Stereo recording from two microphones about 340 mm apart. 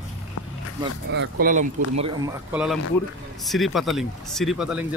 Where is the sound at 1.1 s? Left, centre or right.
Right.